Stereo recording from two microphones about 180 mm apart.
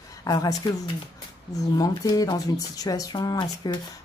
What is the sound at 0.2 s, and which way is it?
Speech, 20° left (ahead or behind).